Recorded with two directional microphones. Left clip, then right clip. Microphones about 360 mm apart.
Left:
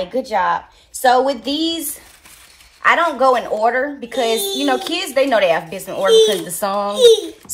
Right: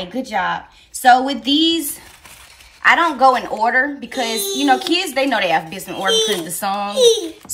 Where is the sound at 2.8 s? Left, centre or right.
Centre.